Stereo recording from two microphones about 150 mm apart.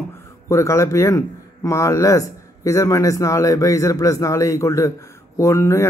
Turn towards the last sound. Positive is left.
turn(degrees=20)  # may be behind; listen again after turning